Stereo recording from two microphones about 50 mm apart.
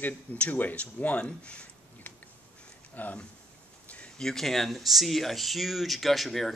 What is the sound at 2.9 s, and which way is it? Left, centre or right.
Speech, left.